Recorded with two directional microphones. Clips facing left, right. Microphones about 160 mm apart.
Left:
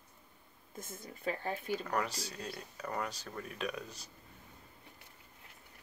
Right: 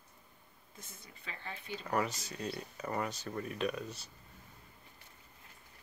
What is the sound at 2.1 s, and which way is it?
Speech, 35° left (ahead or behind).